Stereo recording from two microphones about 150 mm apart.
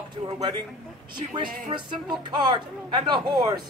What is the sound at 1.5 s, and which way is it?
Music, 65° right (ahead or behind).